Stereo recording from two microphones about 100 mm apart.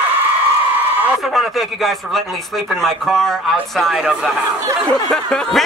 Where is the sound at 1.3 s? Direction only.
Centre (ahead or behind).